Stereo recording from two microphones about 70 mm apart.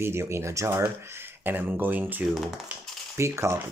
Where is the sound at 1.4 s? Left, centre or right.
Right.